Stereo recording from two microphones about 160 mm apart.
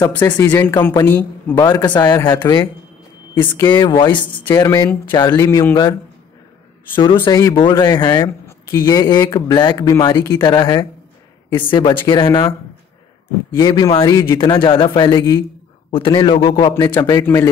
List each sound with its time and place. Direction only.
0.0 s speech: 15° left (ahead or behind)
7.2 s speech: 25° left (ahead or behind)
13.6 s speech: 25° left (ahead or behind)